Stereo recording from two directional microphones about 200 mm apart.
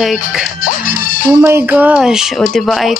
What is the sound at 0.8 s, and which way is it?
Music, 40° left (ahead or behind).